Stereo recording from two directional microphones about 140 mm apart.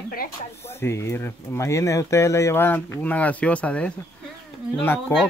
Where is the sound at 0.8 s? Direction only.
20° left (ahead or behind).